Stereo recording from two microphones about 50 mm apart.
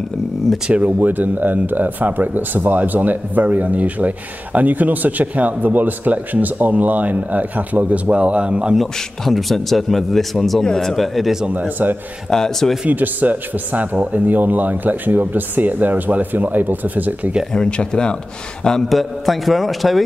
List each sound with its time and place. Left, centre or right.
0.8 s speech: right
8.7 s a man's voice: centre
10.6 s speech: centre
11.0 s a man's voice: centre
11.4 s a man's voice: right
12.3 s speech: centre
12.8 s speech: right
17.5 s speech: centre
18.9 s a man's voice: centre